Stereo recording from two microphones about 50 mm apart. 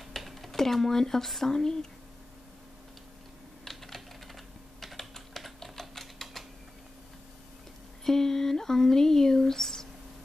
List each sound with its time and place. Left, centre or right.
0.0 s speech: centre
3.6 s typing: centre
8.0 s speech: centre